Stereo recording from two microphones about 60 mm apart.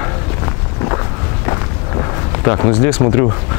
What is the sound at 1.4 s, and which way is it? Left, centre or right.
Run, left.